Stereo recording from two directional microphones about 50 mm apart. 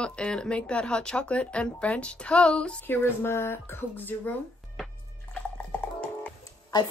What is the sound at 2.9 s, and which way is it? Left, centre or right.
Speech, left.